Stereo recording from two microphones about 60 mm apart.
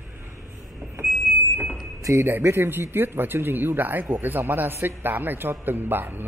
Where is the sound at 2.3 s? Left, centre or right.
Right.